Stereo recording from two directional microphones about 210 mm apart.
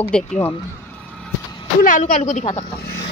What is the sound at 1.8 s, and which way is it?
Speech, 40° left (ahead or behind).